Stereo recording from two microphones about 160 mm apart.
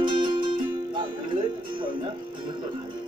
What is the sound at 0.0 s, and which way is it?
Music, 30° right (ahead or behind).